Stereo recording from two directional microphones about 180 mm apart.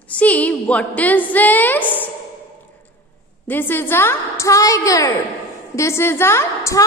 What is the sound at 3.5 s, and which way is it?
A woman's voice, 10° left (ahead or behind).